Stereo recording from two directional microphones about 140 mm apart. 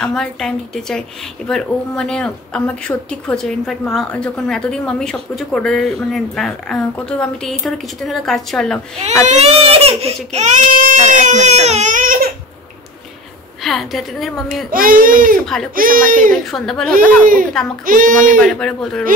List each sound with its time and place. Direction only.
0.0 s speech: 5° left (ahead or behind)
9.2 s speech: 50° right (ahead or behind); by 12.3 s 75° right (ahead or behind)
13.6 s speech: centre (ahead or behind)
14.7 s speech: 90° right
15.4 s speech: 5° left (ahead or behind)
15.7 s speech: 90° right
16.4 s speech: centre (ahead or behind)
16.9 s a child's voice: 80° right
18.4 s speech: 5° left (ahead or behind)